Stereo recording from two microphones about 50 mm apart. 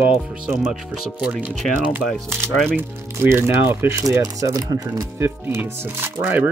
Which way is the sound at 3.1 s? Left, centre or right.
Right.